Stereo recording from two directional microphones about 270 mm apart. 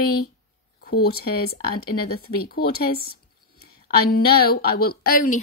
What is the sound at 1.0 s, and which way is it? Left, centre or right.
A woman's voice, left.